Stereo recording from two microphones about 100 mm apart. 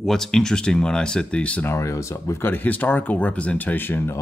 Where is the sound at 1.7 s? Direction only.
30° left (ahead or behind).